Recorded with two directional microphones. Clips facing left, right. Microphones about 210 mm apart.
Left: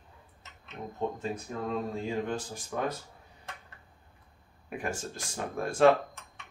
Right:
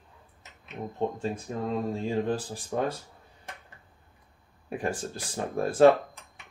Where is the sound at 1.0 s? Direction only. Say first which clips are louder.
Right 3 dB; 30° right (ahead or behind).